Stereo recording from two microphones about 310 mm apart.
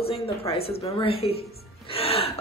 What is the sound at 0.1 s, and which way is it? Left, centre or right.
A woman's voice, centre.